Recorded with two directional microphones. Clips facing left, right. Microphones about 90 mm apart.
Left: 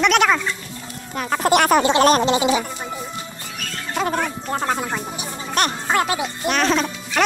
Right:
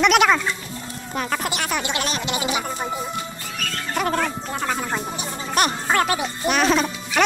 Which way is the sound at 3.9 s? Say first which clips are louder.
Left 1 dB; 20° left (ahead or behind).